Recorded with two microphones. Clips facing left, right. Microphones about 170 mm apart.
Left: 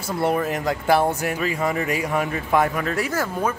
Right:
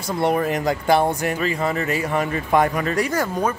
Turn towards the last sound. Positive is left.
turn(degrees=5)  # may be behind; listen again after turning